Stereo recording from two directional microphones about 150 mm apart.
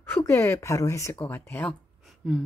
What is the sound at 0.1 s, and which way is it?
Speech, 20° left (ahead or behind).